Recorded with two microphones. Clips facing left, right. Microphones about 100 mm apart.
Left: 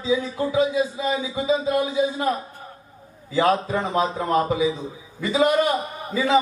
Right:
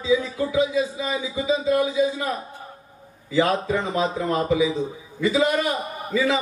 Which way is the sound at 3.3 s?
35° left (ahead or behind).